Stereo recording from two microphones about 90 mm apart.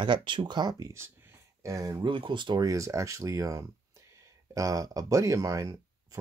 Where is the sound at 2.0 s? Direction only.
60° right (ahead or behind).